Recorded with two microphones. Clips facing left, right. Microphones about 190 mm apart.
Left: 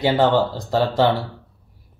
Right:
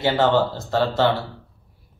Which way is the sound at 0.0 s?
15° left (ahead or behind).